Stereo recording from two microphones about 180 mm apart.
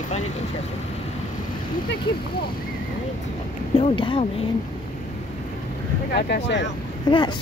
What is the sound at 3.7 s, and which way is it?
Speech, 30° left (ahead or behind).